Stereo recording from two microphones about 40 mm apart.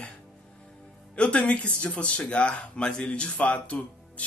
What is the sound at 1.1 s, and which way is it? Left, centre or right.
Speech, left.